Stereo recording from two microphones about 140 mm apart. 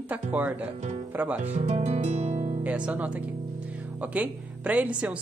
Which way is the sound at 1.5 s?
50° right (ahead or behind).